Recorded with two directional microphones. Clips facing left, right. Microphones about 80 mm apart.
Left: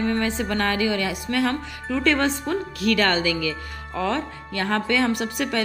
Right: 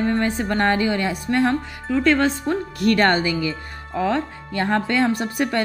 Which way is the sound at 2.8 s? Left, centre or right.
Right.